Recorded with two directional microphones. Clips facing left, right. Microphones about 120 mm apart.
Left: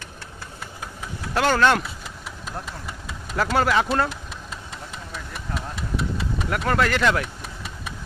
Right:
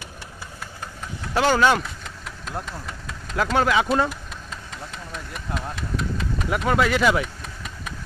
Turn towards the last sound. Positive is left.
turn(degrees=-5)  # may be behind; listen again after turning